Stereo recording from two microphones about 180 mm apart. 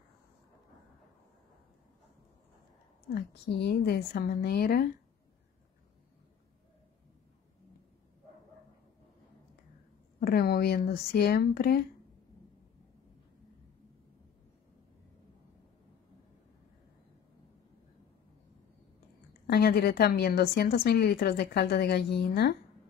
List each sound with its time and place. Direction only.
3.2 s a woman's voice: 65° left (ahead or behind)
10.2 s a woman's voice: 60° left (ahead or behind)
19.4 s a woman's voice: 60° left (ahead or behind)